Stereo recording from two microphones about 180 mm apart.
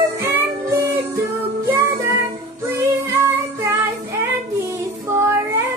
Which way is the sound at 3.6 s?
10° right (ahead or behind).